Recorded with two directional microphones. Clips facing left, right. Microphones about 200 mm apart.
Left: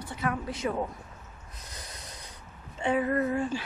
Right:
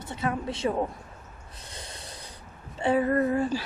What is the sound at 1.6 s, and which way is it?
Snort, 30° right (ahead or behind).